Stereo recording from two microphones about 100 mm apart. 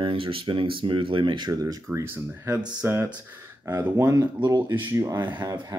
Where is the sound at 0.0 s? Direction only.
60° right (ahead or behind).